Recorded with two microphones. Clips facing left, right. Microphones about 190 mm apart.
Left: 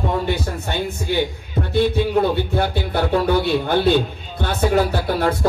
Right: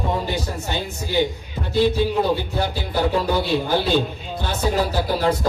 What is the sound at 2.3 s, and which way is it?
A man's voice, 60° left (ahead or behind).